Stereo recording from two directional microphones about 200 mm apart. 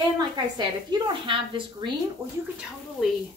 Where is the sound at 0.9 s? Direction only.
25° right (ahead or behind).